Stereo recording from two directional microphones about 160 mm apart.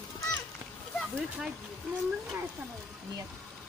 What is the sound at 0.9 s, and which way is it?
Speech, 5° left (ahead or behind).